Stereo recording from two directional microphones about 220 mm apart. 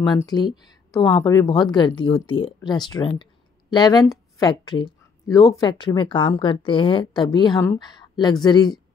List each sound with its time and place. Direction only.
0.0 s speech: 20° left (ahead or behind)